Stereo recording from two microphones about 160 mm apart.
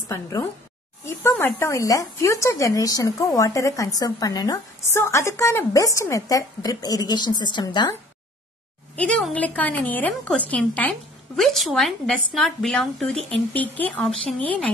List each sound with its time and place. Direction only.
0.1 s a woman's voice: 15° left (ahead or behind)
8.9 s a woman's voice: 5° left (ahead or behind)